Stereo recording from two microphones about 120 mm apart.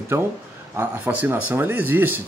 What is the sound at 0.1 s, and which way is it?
Speech, 20° right (ahead or behind).